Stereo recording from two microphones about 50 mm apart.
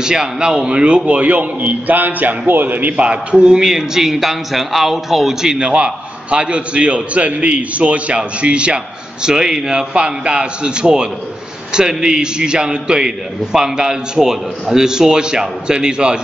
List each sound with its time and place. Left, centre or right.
0.0 s a man's voice: centre; by 2.9 s right
3.0 s a man's voice: right